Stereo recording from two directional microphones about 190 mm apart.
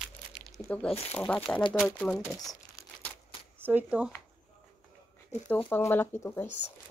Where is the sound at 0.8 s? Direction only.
35° left (ahead or behind).